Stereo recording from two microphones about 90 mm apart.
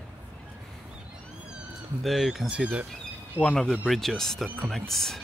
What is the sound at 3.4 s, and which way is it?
Speech, 20° right (ahead or behind).